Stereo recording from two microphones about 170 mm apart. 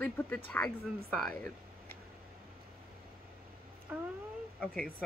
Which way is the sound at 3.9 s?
5° right (ahead or behind).